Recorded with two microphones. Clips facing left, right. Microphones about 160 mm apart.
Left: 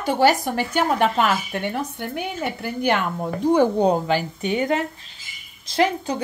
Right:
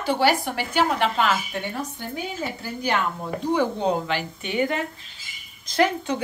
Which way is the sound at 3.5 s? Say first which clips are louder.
Left 5 dB; 40° left (ahead or behind).